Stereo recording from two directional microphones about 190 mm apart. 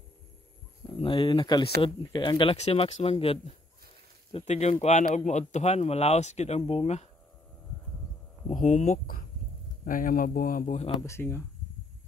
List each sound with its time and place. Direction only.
0.8 s speech: 25° left (ahead or behind)
8.5 s speech: 45° left (ahead or behind)
11.0 s speech: 15° left (ahead or behind)